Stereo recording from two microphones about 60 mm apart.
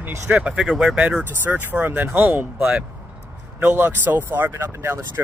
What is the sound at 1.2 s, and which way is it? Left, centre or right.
Speech, right.